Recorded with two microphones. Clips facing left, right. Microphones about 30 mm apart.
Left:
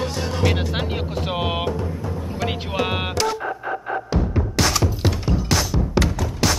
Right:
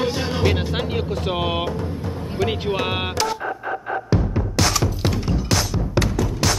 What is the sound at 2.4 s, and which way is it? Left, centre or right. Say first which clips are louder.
Music: right 3 dB; centre.